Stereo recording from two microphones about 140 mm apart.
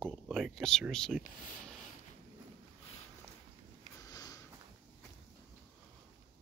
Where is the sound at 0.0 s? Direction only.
Centre (ahead or behind).